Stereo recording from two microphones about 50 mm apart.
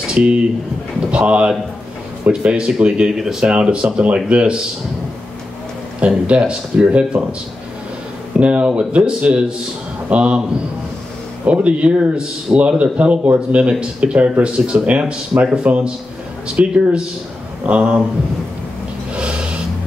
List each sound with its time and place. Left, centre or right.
0.1 s a man's voice: right
3.2 s speech: centre
3.4 s a man's voice: right
5.9 s a man's voice: right
8.4 s a man's voice: right
11.4 s a man's voice: right
19.1 s a sound: right